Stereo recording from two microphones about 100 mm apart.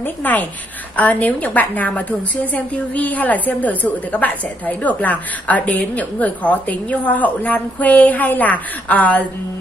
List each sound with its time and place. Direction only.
0.0 s a woman's voice: 15° left (ahead or behind)